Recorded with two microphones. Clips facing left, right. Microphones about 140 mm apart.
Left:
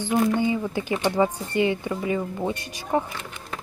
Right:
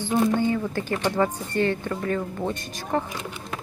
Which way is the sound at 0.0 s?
15° left (ahead or behind).